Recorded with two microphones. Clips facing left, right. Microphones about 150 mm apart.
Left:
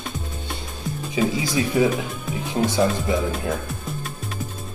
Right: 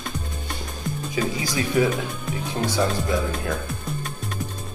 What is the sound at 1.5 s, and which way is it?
Speech, 20° left (ahead or behind).